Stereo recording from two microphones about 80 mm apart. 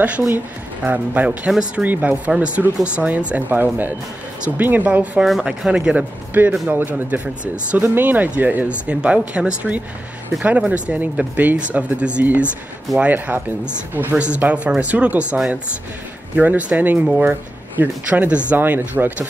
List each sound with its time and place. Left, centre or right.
0.8 s speech: centre
5.2 s speech: centre
6.4 s speech: right